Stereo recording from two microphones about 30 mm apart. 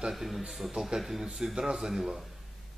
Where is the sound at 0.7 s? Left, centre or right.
Right.